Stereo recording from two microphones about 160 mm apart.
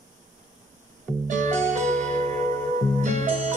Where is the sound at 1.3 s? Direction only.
55° right (ahead or behind).